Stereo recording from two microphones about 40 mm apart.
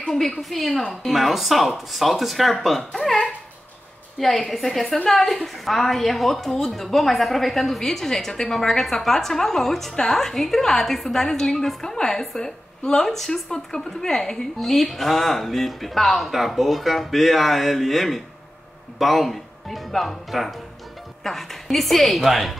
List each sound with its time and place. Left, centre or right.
0.1 s a woman's voice: centre
4.2 s a woman's voice: centre
4.8 s a woman's voice: left
5.1 s a woman's voice: centre